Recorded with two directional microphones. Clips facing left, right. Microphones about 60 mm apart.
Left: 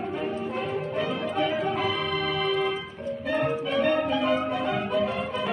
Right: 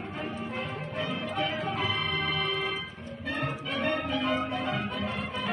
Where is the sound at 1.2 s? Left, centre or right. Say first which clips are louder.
Left 5 dB; left.